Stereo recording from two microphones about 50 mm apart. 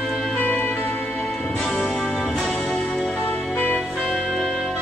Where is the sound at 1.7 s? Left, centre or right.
Centre.